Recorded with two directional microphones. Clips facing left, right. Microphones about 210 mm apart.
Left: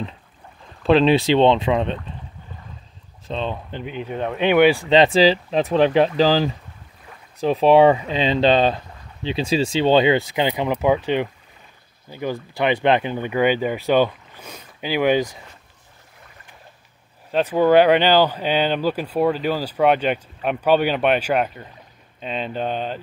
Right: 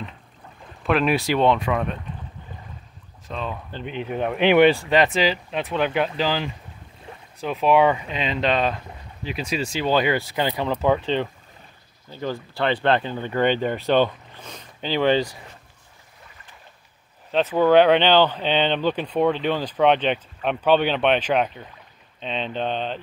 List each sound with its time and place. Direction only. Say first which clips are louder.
0.8 s speech: left 6 dB; 25° left (ahead or behind)
3.3 s speech: left 4 dB; 30° left (ahead or behind)
3.8 s speech: right 1 dB; centre (ahead or behind)
4.8 s speech: left 5 dB; 25° left (ahead or behind)
12.1 s speech: left 2 dB; 15° left (ahead or behind)
17.3 s speech: left 1 dB; 10° left (ahead or behind)